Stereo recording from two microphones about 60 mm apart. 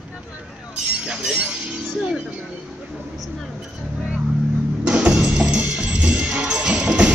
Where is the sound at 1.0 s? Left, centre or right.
Centre.